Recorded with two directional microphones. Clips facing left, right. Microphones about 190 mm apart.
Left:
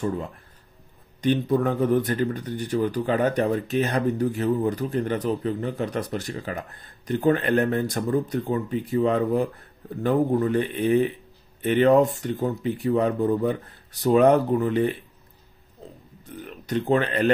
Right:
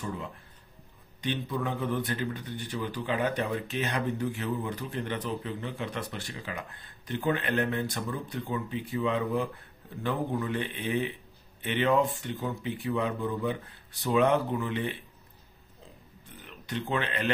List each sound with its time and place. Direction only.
1.2 s speech: 45° left (ahead or behind)
16.6 s speech: 40° left (ahead or behind)